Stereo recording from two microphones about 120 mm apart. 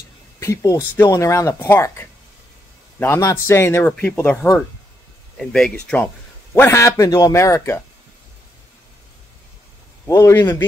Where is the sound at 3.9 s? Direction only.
10° left (ahead or behind).